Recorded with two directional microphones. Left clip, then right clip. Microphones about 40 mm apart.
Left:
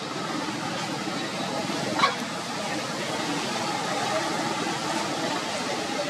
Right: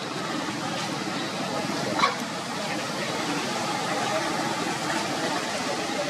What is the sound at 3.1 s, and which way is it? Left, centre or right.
Vehicle, centre.